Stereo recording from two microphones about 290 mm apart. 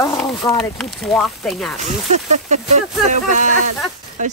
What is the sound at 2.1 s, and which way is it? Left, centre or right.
Speech, right.